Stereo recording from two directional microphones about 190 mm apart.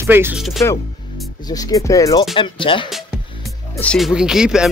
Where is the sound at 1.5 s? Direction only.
15° left (ahead or behind).